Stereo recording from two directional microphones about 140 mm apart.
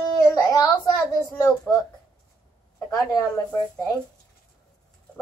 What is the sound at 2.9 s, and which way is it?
Speech, 30° left (ahead or behind).